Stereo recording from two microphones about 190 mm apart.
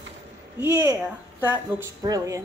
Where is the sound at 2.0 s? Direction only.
20° right (ahead or behind).